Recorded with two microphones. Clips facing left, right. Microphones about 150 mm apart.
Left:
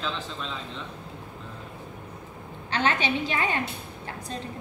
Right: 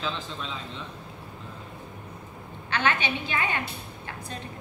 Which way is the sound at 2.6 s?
35° left (ahead or behind).